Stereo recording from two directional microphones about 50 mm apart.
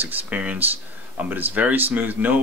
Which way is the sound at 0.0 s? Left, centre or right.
Right.